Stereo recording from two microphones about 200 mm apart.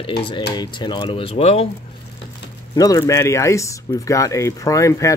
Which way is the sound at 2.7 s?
20° left (ahead or behind).